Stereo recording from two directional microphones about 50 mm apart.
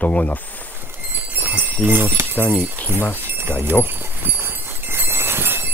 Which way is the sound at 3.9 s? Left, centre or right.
Right.